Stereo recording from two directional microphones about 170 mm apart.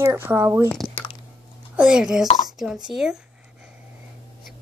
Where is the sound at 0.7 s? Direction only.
Centre (ahead or behind).